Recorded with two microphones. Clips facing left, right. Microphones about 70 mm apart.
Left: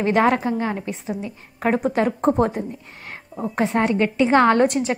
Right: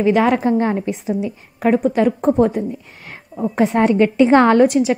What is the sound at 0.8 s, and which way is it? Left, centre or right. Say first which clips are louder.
Speech: right 7 dB; centre.